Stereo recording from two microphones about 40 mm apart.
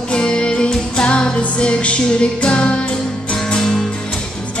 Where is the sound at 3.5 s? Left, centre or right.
Centre.